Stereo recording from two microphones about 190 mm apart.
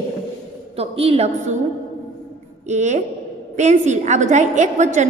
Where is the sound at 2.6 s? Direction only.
40° right (ahead or behind).